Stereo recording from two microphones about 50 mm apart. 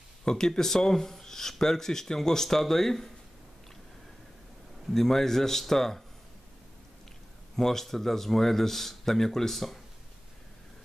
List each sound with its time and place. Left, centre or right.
0.2 s speech: centre
4.9 s speech: centre
7.5 s speech: centre